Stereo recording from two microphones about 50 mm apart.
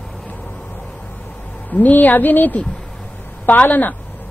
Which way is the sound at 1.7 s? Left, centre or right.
Left.